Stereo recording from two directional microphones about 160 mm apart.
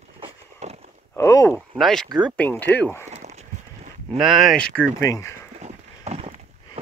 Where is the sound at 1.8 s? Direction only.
5° left (ahead or behind).